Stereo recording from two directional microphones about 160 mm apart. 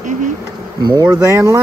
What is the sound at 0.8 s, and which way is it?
Insect, 25° right (ahead or behind).